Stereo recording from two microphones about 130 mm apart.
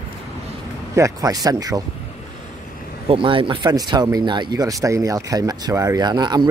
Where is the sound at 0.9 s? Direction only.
25° right (ahead or behind).